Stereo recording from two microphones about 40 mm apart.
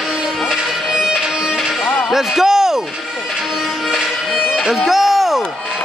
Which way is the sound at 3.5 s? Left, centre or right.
Centre.